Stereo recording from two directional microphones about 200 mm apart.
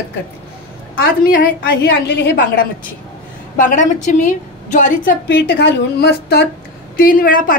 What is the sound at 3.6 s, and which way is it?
A woman's voice, 40° left (ahead or behind).